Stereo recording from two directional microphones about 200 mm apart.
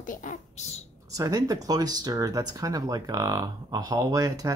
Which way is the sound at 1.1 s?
15° right (ahead or behind).